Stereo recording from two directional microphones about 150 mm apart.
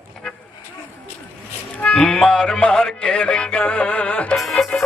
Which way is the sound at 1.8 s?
5° left (ahead or behind).